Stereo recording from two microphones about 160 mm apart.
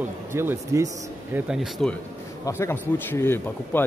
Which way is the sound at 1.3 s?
5° right (ahead or behind).